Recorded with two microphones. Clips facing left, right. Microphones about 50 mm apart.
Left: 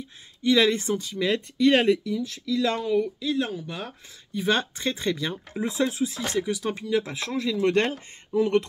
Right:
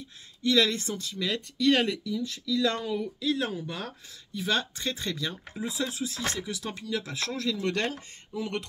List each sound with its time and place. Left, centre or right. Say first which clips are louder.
0.4 s speech: left 4 dB; left
2.5 s speech: left 4 dB; centre
4.3 s speech: left 5 dB; left
5.6 s speech: left 7 dB; left; by 7.6 s centre
7.6 s speech: left 7 dB; left